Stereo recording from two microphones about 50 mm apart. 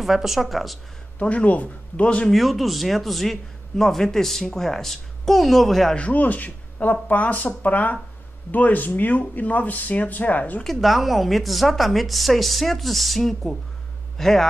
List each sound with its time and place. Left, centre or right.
0.0 s a man's voice: centre
1.2 s speech: left
2.3 s a man's voice: centre
5.9 s speech: left
10.6 s a man's voice: centre